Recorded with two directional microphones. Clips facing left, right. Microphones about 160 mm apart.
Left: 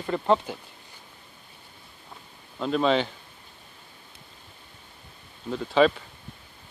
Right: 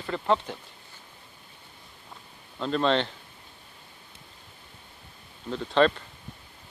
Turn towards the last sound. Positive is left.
turn(degrees=5)  # may be behind; listen again after turning